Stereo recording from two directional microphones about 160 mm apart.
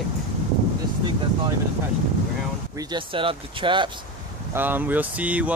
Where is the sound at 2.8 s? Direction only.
30° right (ahead or behind).